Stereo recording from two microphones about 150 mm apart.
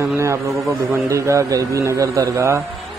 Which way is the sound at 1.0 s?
20° right (ahead or behind).